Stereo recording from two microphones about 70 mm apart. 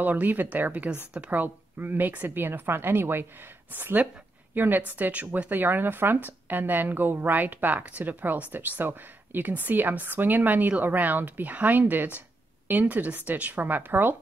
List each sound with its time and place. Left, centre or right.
0.0 s speech: right